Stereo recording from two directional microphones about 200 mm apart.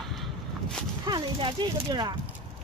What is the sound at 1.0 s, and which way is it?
Speech, 20° right (ahead or behind).